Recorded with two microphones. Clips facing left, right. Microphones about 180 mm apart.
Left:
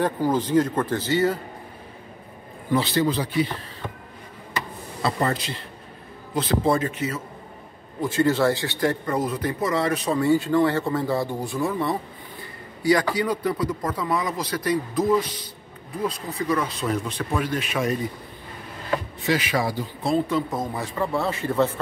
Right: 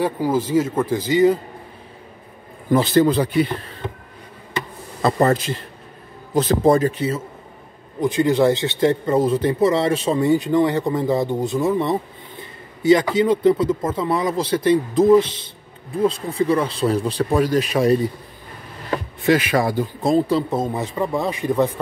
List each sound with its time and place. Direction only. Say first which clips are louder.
0.0 s speech: right 2 dB; 10° right (ahead or behind)
2.7 s a man's voice: right 6 dB; 45° right (ahead or behind)
5.0 s a man's voice: right 7 dB; 45° right (ahead or behind)
8.0 s speech: right 4 dB; 15° right (ahead or behind); by 17.9 s 35° right (ahead or behind)
19.2 s speech: right 8 dB; 55° right (ahead or behind); by 21.7 s 15° right (ahead or behind)